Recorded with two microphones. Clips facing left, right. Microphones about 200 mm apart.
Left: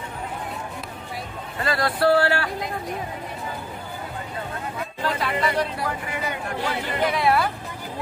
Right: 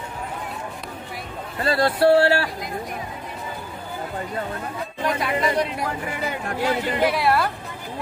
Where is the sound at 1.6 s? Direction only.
25° right (ahead or behind).